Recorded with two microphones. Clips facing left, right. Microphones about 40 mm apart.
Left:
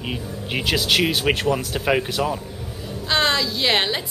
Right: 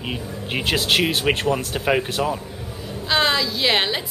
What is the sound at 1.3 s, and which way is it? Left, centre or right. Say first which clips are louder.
Speech: even; right.